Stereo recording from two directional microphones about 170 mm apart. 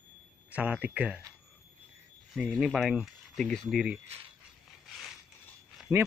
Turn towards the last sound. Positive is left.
turn(degrees=0)  # may be behind; listen again after turning